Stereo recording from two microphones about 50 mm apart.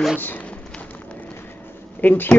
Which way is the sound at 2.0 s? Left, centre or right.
Left.